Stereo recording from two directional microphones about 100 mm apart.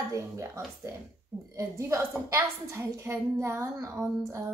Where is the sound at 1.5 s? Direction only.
30° right (ahead or behind).